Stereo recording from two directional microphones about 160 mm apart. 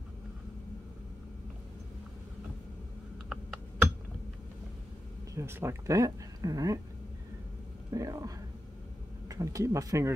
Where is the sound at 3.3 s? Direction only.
5° right (ahead or behind).